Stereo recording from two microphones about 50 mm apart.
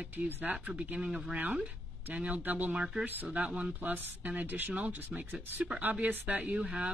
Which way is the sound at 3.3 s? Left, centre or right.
Right.